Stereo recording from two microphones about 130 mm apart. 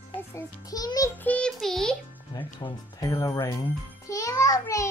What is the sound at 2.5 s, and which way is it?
Speech, 40° left (ahead or behind).